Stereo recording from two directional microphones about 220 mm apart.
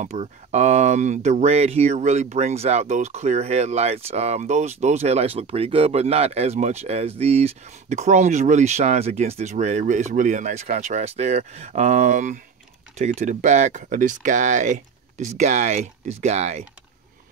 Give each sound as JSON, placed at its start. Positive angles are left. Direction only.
{"t": 0.0, "sound": "speech", "side_deg": -30}